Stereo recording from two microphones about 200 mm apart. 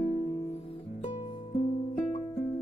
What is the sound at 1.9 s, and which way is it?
Music, 35° left (ahead or behind).